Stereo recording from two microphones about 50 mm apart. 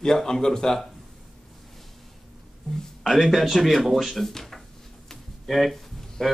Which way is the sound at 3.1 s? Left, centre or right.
Centre.